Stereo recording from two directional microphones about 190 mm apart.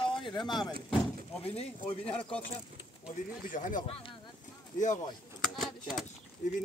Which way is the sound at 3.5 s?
45° left (ahead or behind).